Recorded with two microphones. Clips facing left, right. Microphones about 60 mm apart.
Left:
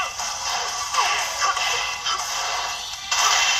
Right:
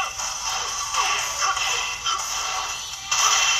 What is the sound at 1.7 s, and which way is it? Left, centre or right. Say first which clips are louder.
Music: left 2 dB; left.